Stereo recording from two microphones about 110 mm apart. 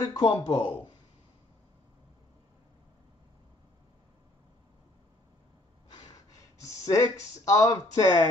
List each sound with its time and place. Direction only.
0.0 s speech: 40° left (ahead or behind)
6.6 s speech: 30° left (ahead or behind)